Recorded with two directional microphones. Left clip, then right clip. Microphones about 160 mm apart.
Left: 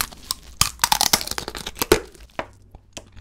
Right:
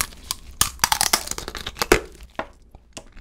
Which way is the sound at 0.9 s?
10° left (ahead or behind).